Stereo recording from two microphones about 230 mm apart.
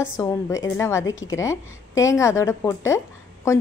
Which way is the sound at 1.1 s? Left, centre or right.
Left.